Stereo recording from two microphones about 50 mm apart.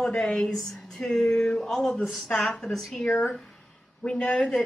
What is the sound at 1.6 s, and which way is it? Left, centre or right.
A woman's voice, centre.